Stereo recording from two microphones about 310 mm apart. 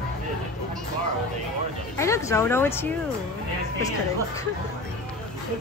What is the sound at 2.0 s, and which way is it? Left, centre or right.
Speech, centre.